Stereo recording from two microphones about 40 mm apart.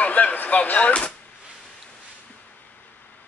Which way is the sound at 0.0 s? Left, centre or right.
Left.